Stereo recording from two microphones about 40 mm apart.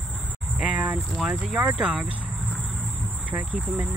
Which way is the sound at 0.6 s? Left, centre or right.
Right.